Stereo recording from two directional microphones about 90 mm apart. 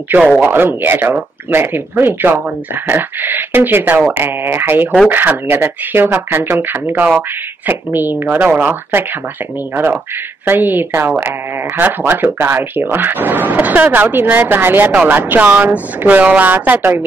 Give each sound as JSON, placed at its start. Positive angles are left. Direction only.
{"t": 0.4, "sound": "speech", "side_deg": -25}
{"t": 10.4, "sound": "speech", "side_deg": -20}